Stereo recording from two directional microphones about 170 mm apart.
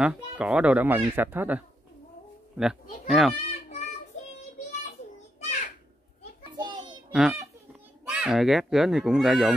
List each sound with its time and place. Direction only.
0.0 s speech: 5° right (ahead or behind)
3.4 s children playing: 40° left (ahead or behind)
6.5 s a sound: 25° right (ahead or behind)
7.1 s a child's voice: 5° right (ahead or behind)